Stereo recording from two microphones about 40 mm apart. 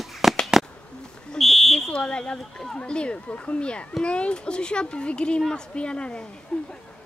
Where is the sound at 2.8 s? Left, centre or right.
Left.